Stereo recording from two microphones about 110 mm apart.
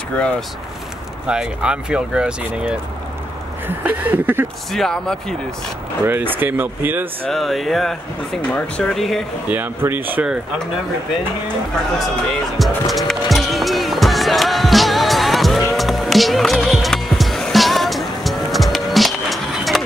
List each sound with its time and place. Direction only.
1.2 s speech: 10° right (ahead or behind)
4.7 s speech: 5° left (ahead or behind)
6.0 s speech: 20° right (ahead or behind)
7.2 s speech: centre (ahead or behind)
8.5 s speech: 15° left (ahead or behind)
8.9 s speech: centre (ahead or behind)
9.5 s speech: 20° right (ahead or behind)
12.5 s music: centre (ahead or behind)